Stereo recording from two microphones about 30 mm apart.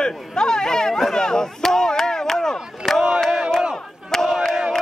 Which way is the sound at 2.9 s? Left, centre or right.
Centre.